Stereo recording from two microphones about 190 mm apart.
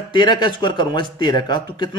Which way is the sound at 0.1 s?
25° left (ahead or behind).